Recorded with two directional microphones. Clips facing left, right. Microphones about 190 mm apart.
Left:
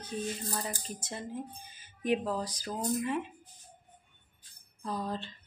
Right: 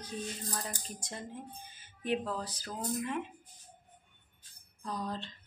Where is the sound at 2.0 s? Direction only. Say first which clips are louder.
Left 4 dB; 15° left (ahead or behind).